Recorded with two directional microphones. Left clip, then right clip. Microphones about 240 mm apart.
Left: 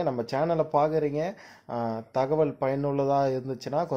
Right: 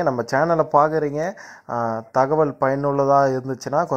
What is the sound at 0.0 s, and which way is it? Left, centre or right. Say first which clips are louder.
A man's voice: right 8 dB; centre.